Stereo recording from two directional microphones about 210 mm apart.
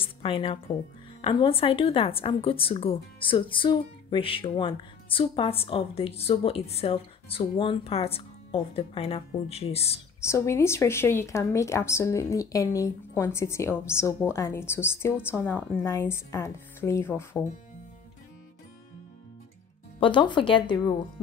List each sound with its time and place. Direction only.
0.0 s a woman's voice: 25° left (ahead or behind)
10.2 s speech: 15° left (ahead or behind)
20.0 s a woman's voice: 20° left (ahead or behind)